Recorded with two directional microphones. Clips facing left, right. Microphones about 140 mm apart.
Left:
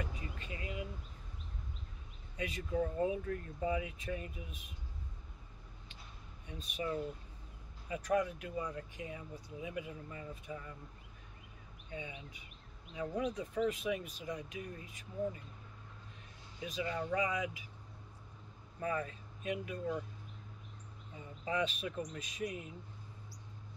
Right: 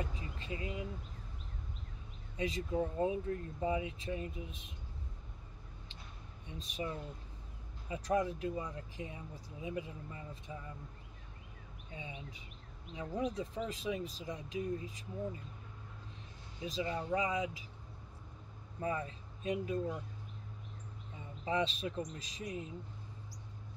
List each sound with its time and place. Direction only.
0.0 s a sound: 25° right (ahead or behind)
2.3 s speech: 30° right (ahead or behind)
6.4 s speech: 30° right (ahead or behind)
7.9 s speech: 30° right (ahead or behind)
11.9 s speech: 30° right (ahead or behind)
16.6 s speech: 30° right (ahead or behind)
18.8 s speech: 25° right (ahead or behind)
21.5 s speech: 30° right (ahead or behind)